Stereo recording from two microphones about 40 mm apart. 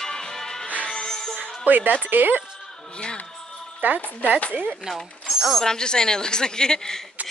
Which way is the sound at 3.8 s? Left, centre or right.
Right.